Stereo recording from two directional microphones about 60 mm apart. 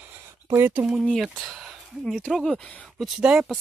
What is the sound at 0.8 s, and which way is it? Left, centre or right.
Speech, right.